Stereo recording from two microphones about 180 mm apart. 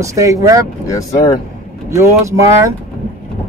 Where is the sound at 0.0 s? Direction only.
15° right (ahead or behind).